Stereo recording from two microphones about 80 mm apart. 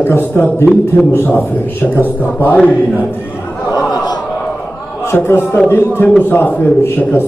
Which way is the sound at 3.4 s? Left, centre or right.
Centre.